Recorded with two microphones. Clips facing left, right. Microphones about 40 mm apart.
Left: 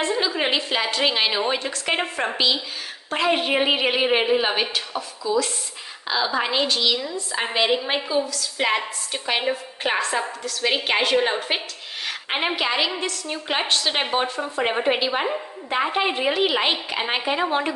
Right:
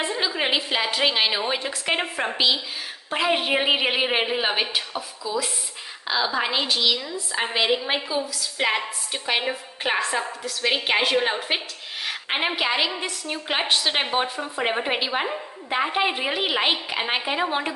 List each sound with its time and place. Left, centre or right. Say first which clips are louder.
0.0 s a woman's voice: left 2 dB; centre